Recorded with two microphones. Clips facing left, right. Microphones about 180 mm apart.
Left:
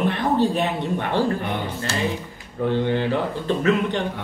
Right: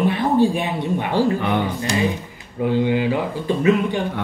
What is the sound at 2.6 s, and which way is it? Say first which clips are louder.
Speech: right 3 dB; 10° right (ahead or behind).